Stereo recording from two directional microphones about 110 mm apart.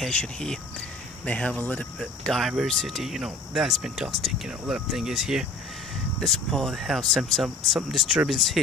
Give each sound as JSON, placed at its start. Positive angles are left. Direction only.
{"t": 0.0, "sound": "speech", "side_deg": 5}